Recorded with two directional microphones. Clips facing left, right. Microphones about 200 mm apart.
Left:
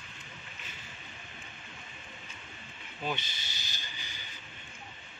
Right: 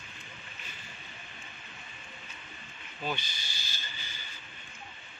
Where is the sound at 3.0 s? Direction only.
20° left (ahead or behind).